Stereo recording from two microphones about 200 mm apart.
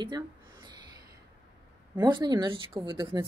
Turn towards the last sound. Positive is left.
turn(degrees=-20)  # may be behind; listen again after turning